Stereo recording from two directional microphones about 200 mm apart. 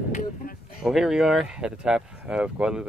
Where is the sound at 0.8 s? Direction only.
Centre (ahead or behind).